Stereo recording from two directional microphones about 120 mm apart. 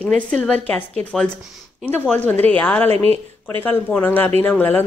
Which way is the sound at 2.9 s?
55° right (ahead or behind).